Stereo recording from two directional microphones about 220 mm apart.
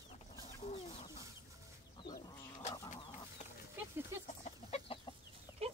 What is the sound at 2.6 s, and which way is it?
Chicken, 30° left (ahead or behind).